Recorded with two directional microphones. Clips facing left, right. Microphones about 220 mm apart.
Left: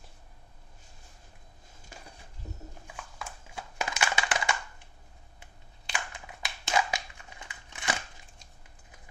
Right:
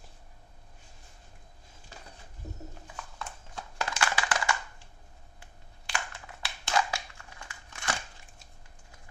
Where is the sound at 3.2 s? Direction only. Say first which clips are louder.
Even; 10° left (ahead or behind).